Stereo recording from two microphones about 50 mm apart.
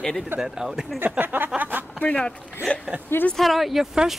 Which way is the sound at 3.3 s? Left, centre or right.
Centre.